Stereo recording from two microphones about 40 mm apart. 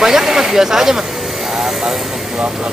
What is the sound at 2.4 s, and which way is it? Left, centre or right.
Speech, centre.